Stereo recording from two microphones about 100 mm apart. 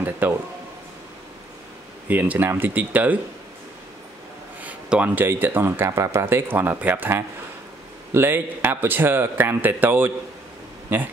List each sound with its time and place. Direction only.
0.2 s speech: 20° right (ahead or behind)
2.0 s speech: 15° right (ahead or behind)
4.6 s speech: 15° right (ahead or behind)